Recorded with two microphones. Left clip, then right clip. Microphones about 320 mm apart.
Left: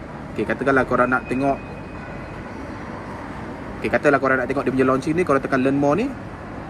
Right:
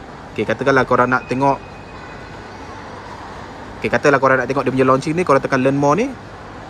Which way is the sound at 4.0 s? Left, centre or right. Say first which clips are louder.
Right 4 dB; right.